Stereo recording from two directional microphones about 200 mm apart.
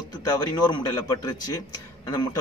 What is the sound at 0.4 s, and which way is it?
A man's voice, 20° left (ahead or behind).